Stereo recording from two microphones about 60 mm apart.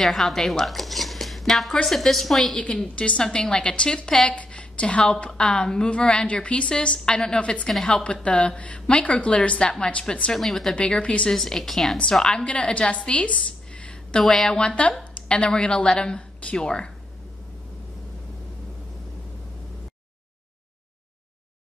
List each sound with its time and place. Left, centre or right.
0.0 s a woman's voice: centre
3.0 s a woman's voice: centre
10.3 s a woman's voice: centre
10.8 s speech: centre
11.3 s a woman's voice: centre
14.2 s a woman's voice: centre